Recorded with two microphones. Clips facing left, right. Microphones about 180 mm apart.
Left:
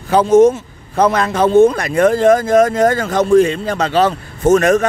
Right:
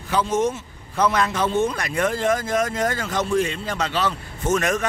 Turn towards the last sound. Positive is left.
turn(degrees=35)  # may be behind; listen again after turning